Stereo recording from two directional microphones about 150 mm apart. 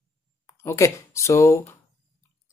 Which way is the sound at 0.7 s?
20° left (ahead or behind).